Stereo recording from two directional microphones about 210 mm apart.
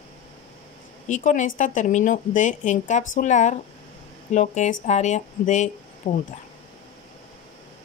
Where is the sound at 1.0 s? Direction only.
35° left (ahead or behind).